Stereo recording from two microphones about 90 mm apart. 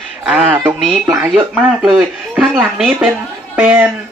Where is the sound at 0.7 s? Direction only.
5° left (ahead or behind).